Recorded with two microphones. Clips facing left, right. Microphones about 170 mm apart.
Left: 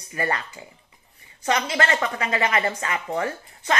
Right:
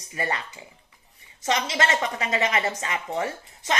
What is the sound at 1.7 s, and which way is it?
Speech, 20° right (ahead or behind).